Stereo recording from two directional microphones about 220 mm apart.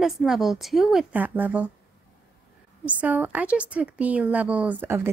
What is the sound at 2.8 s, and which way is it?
A woman's voice, 5° right (ahead or behind).